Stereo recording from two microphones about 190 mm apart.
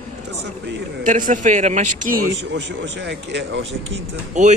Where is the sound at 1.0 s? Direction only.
40° right (ahead or behind).